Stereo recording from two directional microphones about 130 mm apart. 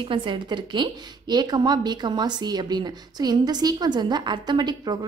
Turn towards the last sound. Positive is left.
turn(degrees=-35)  # may be behind; listen again after turning